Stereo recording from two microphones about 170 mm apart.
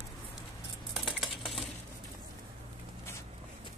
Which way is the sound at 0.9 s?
Centre (ahead or behind).